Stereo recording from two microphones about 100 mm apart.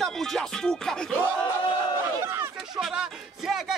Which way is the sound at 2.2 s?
25° right (ahead or behind).